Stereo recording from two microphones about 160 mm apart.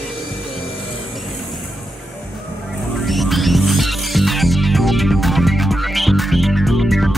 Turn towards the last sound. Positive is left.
turn(degrees=0)  # may be behind; listen again after turning